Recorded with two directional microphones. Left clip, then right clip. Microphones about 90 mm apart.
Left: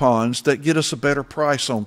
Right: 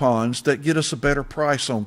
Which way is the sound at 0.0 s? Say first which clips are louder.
Left 2 dB; 40° left (ahead or behind).